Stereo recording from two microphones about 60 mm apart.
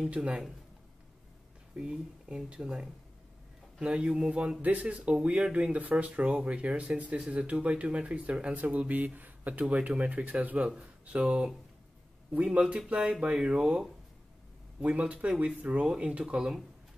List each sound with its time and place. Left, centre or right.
0.1 s speech: centre
1.8 s speech: centre
4.6 s speech: right